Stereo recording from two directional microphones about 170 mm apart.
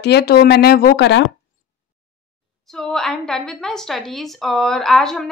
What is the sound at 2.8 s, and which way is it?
A woman's voice, centre (ahead or behind).